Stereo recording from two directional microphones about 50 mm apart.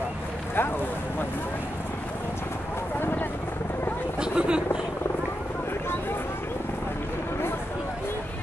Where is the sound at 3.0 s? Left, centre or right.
Left.